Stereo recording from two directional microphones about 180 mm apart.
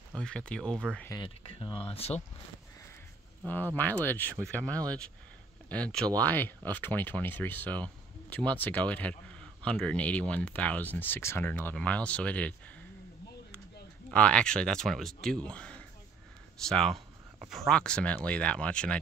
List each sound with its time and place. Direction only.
0.1 s speech: 5° left (ahead or behind)
1.6 s speech: 30° left (ahead or behind)
3.4 s speech: 10° left (ahead or behind)
14.1 s speech: 5° left (ahead or behind)